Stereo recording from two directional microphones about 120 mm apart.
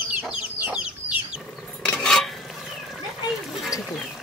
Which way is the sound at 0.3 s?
10° right (ahead or behind).